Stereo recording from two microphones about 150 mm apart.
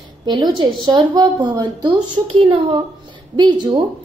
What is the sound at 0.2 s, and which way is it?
A woman's voice, 30° right (ahead or behind).